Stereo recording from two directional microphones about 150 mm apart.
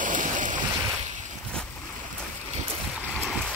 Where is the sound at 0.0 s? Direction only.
60° right (ahead or behind).